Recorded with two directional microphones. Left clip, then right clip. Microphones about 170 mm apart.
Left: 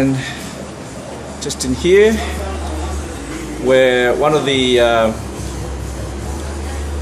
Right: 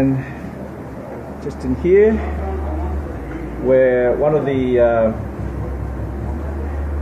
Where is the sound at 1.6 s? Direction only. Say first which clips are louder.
Left 2 dB; 25° left (ahead or behind).